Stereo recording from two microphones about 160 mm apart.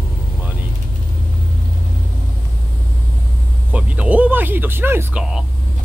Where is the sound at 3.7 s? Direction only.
10° right (ahead or behind).